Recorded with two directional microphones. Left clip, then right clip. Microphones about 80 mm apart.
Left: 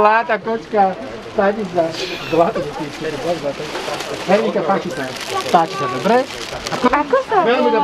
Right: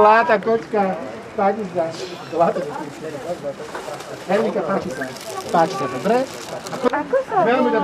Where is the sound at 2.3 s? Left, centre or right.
Right.